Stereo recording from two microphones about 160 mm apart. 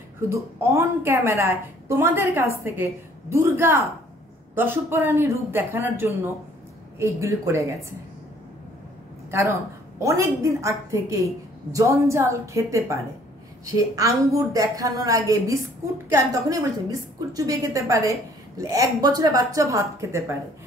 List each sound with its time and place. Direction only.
0.3 s a woman's voice: 15° right (ahead or behind)
9.3 s a woman's voice: 15° right (ahead or behind)